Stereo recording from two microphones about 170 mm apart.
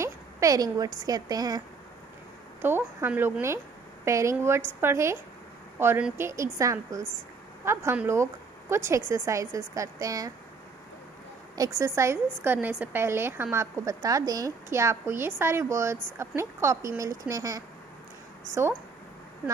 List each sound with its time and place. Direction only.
0.0 s a woman's voice: 20° right (ahead or behind)
2.6 s a woman's voice: 15° right (ahead or behind)
11.5 s a woman's voice: 20° right (ahead or behind)